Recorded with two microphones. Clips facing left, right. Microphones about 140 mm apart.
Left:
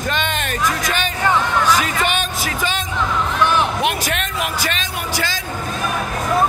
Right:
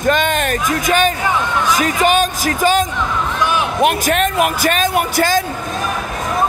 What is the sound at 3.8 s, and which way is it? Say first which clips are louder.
Speech: right 6 dB; 45° right (ahead or behind).